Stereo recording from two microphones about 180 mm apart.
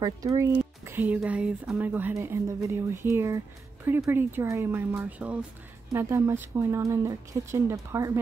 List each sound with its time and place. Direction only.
0.0 s speech: 20° right (ahead or behind)